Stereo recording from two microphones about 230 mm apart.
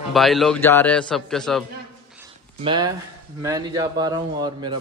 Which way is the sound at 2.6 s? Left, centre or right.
Right.